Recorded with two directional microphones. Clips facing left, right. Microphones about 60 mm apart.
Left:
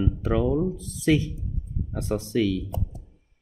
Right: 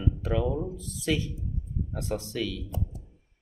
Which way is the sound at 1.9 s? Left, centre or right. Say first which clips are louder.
Left 7 dB; left.